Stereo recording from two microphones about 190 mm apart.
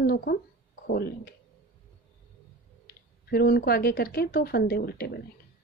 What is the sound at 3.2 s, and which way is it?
Speech, 55° left (ahead or behind).